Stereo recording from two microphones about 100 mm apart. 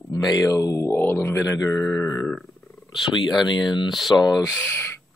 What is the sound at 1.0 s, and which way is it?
Speech, 20° left (ahead or behind).